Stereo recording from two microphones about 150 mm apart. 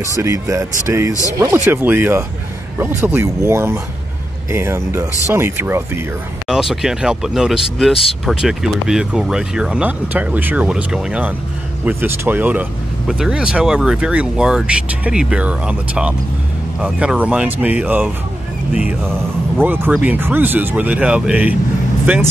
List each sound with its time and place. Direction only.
0.1 s speech: 20° right (ahead or behind)
6.4 s speech: centre (ahead or behind)